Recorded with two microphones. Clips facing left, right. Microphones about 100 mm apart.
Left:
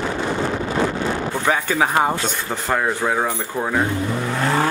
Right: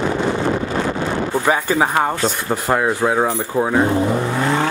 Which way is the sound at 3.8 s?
30° right (ahead or behind).